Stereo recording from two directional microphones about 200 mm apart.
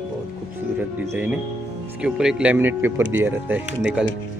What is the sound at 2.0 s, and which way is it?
Speech, 5° right (ahead or behind).